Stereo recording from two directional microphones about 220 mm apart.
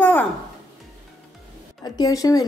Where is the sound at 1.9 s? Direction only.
15° left (ahead or behind).